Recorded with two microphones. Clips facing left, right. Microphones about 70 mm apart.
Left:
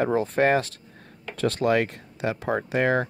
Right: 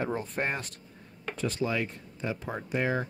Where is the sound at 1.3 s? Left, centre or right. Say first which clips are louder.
Left 8 dB; left.